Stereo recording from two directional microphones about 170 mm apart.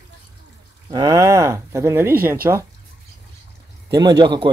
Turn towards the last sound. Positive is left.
turn(degrees=-25)  # may be behind; listen again after turning